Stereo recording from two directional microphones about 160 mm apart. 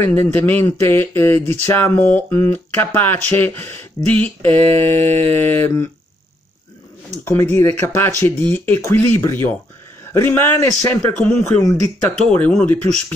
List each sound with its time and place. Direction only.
0.0 s speech: 10° left (ahead or behind)
5.0 s mantra: 40° right (ahead or behind)
5.3 s speech: 10° left (ahead or behind)
7.2 s speech: 15° left (ahead or behind)
12.4 s speech: 10° left (ahead or behind)